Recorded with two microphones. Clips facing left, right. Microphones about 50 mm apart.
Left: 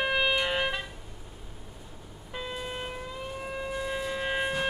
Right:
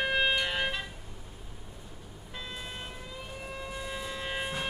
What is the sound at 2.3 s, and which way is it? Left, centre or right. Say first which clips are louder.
Vehicle: left 6 dB; centre.